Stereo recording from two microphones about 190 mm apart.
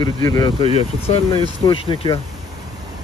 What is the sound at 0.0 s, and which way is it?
Speech, 20° left (ahead or behind).